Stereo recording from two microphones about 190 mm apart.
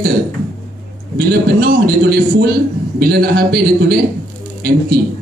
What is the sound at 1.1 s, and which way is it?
A man's voice, 55° right (ahead or behind).